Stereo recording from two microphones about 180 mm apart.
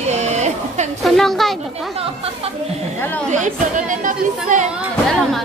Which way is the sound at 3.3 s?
45° right (ahead or behind).